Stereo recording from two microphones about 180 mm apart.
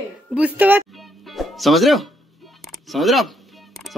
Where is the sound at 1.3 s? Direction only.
Centre (ahead or behind).